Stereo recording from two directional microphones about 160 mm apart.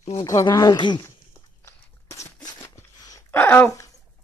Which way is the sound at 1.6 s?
15° left (ahead or behind).